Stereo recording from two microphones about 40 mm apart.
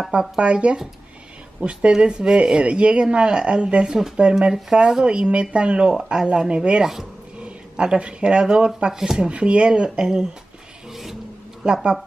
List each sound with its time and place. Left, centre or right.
0.1 s speech: right
1.9 s speech: right
5.9 s speech: centre
6.8 s speech: centre
7.3 s speech: right
8.9 s speech: centre
9.2 s speech: right; by 10.2 s centre
10.9 s a sound: centre
11.6 s speech: centre